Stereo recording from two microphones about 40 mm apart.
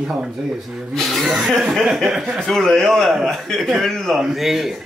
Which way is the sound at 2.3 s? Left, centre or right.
Centre.